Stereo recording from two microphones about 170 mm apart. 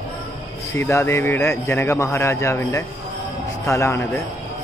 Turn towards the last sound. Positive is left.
turn(degrees=15)  # may be behind; listen again after turning